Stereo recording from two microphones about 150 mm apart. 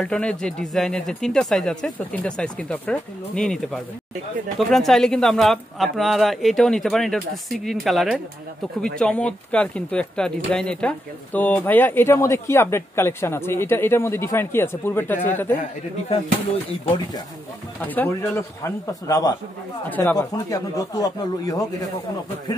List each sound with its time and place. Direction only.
0.0 s speech: 5° left (ahead or behind)
17.7 s speech: 10° left (ahead or behind)